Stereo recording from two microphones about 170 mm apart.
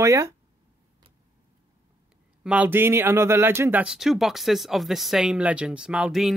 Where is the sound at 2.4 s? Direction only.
10° right (ahead or behind).